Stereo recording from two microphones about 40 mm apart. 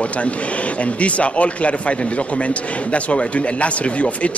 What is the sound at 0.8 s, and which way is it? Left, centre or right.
Speech, left.